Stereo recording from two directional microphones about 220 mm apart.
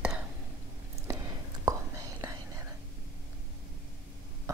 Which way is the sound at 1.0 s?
15° right (ahead or behind).